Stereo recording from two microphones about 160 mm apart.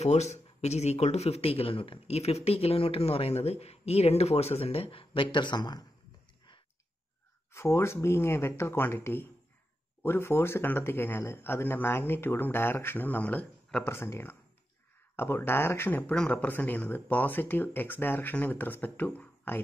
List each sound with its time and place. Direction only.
0.0 s speech: 45° left (ahead or behind); by 5.9 s 25° left (ahead or behind)
7.5 s speech: 15° left (ahead or behind)